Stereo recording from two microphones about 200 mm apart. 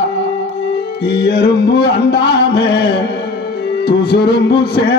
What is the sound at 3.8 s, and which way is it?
Music, 55° left (ahead or behind).